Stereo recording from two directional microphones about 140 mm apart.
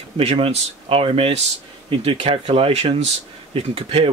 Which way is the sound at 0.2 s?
45° right (ahead or behind).